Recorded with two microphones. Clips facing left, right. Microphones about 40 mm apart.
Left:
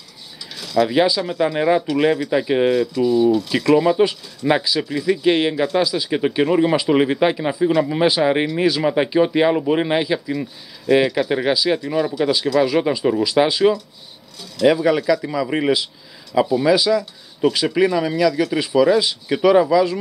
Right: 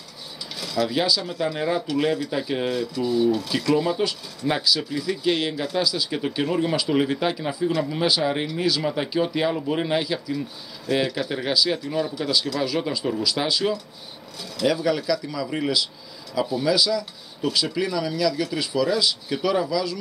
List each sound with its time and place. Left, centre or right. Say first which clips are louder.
0.7 s speech: left 7 dB; left
1.8 s speech: left 5 dB; centre
3.0 s speech: left 4 dB; centre
3.5 s speech: left 7 dB; left